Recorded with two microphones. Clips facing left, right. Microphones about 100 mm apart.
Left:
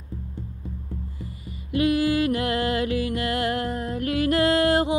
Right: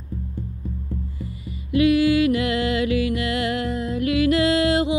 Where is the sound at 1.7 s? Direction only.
40° left (ahead or behind).